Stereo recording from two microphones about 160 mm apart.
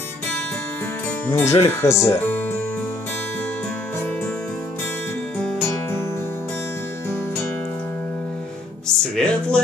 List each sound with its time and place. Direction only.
1.3 s speech: 20° left (ahead or behind)
5.4 s music: 15° left (ahead or behind)
9.1 s music: 5° left (ahead or behind)